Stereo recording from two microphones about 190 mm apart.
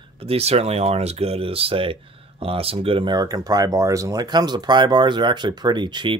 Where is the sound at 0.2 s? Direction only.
30° right (ahead or behind).